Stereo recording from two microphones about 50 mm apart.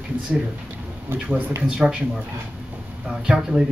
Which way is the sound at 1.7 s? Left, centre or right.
Centre.